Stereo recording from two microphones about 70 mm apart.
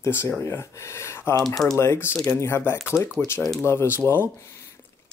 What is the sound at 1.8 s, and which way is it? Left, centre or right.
Speech, left.